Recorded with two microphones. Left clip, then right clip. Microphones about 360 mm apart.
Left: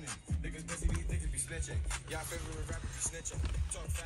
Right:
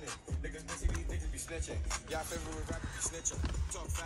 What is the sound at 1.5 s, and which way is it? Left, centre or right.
Music, centre.